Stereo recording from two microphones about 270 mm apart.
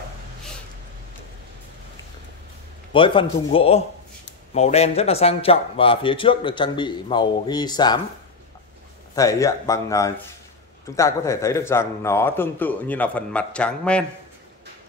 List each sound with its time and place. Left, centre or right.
2.9 s a man's voice: centre
9.1 s a man's voice: centre